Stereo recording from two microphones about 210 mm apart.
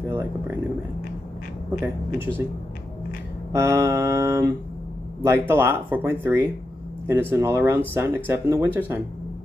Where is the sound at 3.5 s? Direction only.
15° right (ahead or behind).